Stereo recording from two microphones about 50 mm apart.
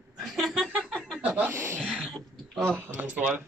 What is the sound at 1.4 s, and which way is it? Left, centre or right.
Speech, right.